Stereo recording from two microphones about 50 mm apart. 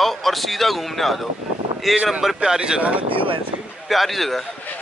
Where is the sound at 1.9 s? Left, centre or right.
Right.